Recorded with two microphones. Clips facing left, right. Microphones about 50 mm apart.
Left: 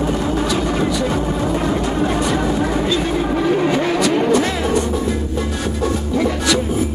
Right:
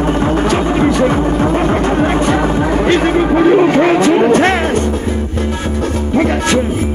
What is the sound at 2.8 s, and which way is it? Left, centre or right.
Vehicle, right.